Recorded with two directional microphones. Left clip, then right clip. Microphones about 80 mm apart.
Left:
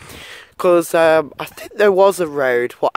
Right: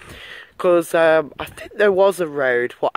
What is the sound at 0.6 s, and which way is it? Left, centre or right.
Speech, left.